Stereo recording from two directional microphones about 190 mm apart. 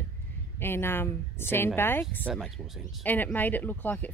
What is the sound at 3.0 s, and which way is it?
A woman's voice, 10° left (ahead or behind).